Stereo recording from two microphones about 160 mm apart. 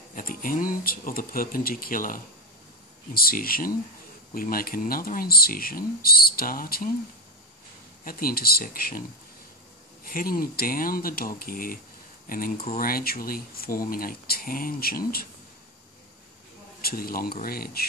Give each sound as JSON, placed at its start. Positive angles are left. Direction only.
{"t": 0.1, "sound": "speech", "side_deg": 60}
{"t": 8.0, "sound": "speech", "side_deg": 65}
{"t": 10.0, "sound": "speech", "side_deg": 65}
{"t": 16.8, "sound": "speech", "side_deg": 65}